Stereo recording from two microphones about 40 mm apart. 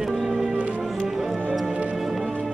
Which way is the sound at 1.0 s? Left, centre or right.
Centre.